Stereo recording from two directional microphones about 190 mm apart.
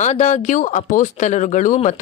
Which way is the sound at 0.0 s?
40° left (ahead or behind).